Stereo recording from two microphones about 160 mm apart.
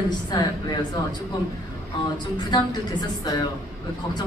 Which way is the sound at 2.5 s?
25° left (ahead or behind).